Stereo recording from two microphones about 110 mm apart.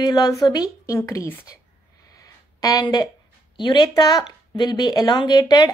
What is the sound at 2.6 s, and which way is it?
A woman's voice, 35° left (ahead or behind).